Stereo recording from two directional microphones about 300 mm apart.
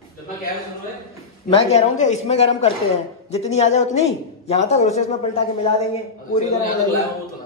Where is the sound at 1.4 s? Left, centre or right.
Left.